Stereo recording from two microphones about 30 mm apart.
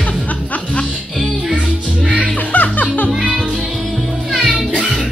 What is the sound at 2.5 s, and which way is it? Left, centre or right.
Music, left.